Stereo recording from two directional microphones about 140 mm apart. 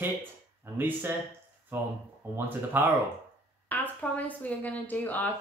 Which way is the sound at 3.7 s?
10° left (ahead or behind).